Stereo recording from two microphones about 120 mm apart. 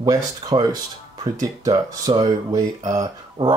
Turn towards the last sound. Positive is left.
turn(degrees=-30)  # may be behind; listen again after turning